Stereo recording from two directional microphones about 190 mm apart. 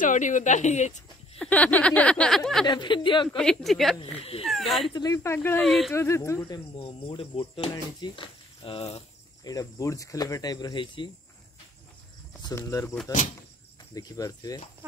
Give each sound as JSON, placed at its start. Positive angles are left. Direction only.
{"t": 0.0, "sound": "a woman's voice", "side_deg": 40}
{"t": 1.4, "sound": "a sound", "side_deg": 5}
{"t": 2.6, "sound": "speech", "side_deg": 25}
{"t": 3.3, "sound": "a sound", "side_deg": 0}
{"t": 4.2, "sound": "a woman's voice", "side_deg": 30}
{"t": 4.5, "sound": "speech", "side_deg": 0}
{"t": 4.9, "sound": "speech", "side_deg": 20}
{"t": 5.6, "sound": "a sound", "side_deg": 0}
{"t": 5.9, "sound": "speech", "side_deg": 15}
{"t": 6.8, "sound": "speech", "side_deg": 30}
{"t": 9.4, "sound": "speech", "side_deg": 20}
{"t": 12.4, "sound": "speech", "side_deg": 20}
{"t": 13.9, "sound": "speech", "side_deg": 20}